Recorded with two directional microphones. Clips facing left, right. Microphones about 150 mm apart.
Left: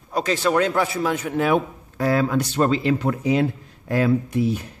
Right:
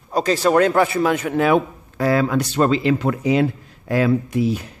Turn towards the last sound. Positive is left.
turn(degrees=-90)